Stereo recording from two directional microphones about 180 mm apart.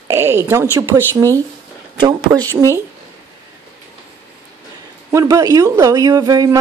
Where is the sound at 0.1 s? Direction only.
15° right (ahead or behind).